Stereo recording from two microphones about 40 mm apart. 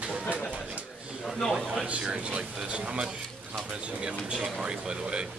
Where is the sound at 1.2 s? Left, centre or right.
Centre.